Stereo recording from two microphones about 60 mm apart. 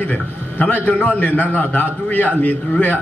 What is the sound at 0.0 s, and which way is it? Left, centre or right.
A man's voice, left.